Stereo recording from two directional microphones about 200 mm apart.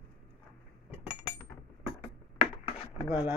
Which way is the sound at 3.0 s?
25° left (ahead or behind).